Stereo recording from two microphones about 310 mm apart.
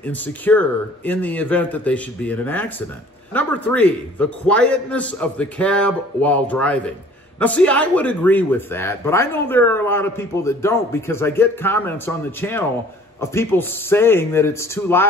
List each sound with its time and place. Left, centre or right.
0.0 s a man's voice: centre